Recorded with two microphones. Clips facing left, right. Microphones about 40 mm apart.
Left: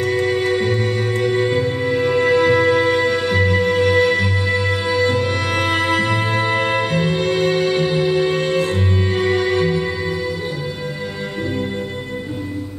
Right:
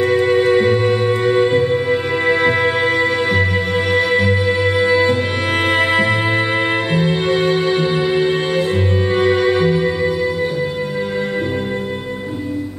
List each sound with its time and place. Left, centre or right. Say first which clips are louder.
0.0 s music: right 4 dB; right